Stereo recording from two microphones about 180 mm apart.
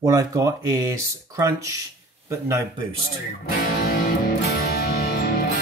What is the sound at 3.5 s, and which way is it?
Music, 55° left (ahead or behind).